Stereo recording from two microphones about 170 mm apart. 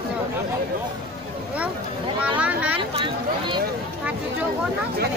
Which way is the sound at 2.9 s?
30° right (ahead or behind).